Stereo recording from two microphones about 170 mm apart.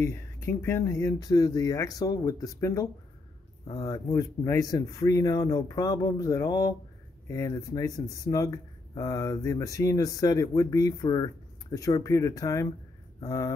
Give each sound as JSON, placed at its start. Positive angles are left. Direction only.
{"t": 0.0, "sound": "speech", "side_deg": 15}